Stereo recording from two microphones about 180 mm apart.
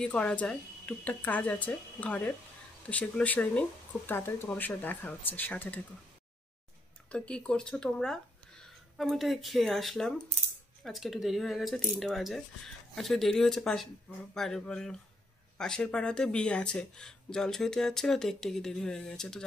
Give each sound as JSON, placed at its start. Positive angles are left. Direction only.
{"t": 0.0, "sound": "speech", "side_deg": 5}
{"t": 7.1, "sound": "speech", "side_deg": 5}